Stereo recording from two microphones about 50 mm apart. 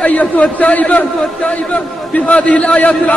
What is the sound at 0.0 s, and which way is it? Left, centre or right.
A man's voice, left.